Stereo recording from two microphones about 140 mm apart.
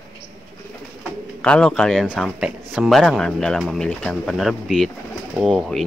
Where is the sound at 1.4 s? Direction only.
5° left (ahead or behind).